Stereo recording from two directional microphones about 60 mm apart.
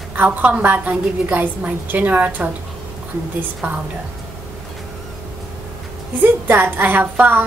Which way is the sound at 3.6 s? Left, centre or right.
Right.